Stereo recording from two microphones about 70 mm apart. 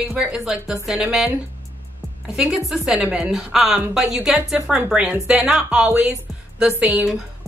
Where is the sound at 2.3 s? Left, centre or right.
Centre.